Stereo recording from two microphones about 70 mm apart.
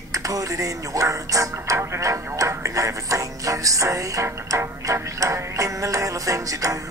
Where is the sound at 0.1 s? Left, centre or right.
Right.